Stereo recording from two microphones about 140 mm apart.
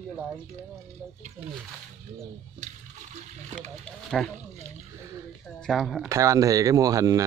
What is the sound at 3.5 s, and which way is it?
Speech, 55° right (ahead or behind).